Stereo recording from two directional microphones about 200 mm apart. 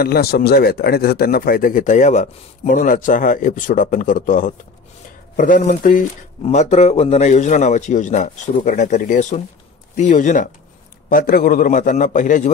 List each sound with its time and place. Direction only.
0.0 s speech: 50° left (ahead or behind)
6.4 s a man's voice: 35° left (ahead or behind)